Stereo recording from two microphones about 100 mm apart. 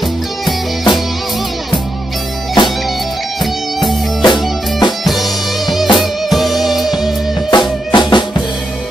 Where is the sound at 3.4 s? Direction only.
Centre (ahead or behind).